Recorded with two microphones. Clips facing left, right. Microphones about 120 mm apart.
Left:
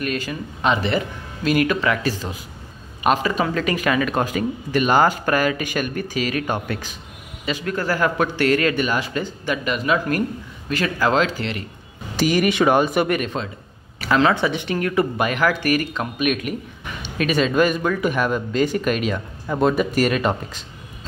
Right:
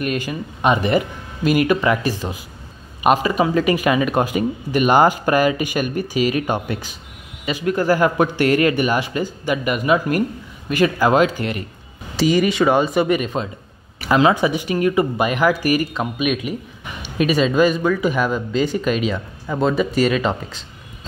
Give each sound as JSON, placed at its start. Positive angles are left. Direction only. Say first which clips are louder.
{"t": 0.1, "sound": "speech", "louder": "right 2 dB", "side_deg": -15}
{"t": 12.3, "sound": "speech", "louder": "right 1 dB", "side_deg": 0}